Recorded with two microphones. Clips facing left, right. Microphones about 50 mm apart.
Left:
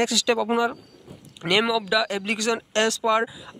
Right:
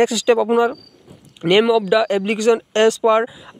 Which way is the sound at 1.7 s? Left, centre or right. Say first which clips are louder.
Right 8 dB; right.